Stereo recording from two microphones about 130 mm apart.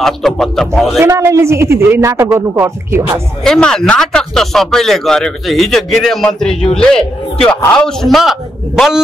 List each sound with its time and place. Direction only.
0.0 s speech: centre (ahead or behind)
0.9 s a man's voice: 20° right (ahead or behind)
2.3 s music: 15° right (ahead or behind)
3.4 s speech: 5° left (ahead or behind)